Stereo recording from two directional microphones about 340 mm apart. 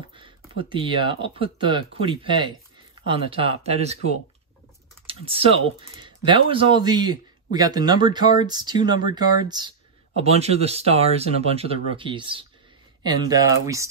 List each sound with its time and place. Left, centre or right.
0.1 s speech: centre